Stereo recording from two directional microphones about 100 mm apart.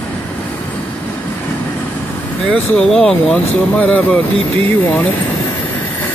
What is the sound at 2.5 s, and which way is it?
Speech, 5° left (ahead or behind).